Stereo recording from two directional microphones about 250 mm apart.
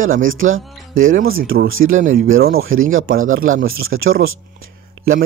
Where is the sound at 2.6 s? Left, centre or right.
Right.